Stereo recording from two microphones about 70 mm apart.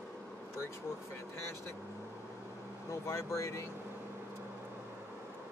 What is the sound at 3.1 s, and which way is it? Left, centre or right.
Speech, left.